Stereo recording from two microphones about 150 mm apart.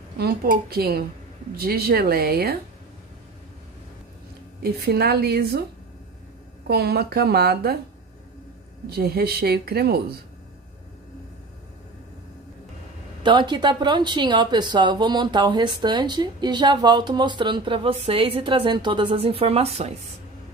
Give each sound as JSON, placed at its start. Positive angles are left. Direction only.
{"t": 0.2, "sound": "speech", "side_deg": -90}
{"t": 4.6, "sound": "speech", "side_deg": -90}
{"t": 6.7, "sound": "speech", "side_deg": -90}
{"t": 8.8, "sound": "speech", "side_deg": -90}
{"t": 13.2, "sound": "speech", "side_deg": -30}